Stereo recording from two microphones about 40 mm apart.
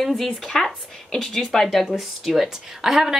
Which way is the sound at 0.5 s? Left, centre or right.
Centre.